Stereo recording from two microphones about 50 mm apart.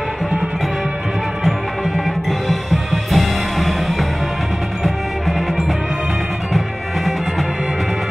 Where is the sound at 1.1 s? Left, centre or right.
Centre.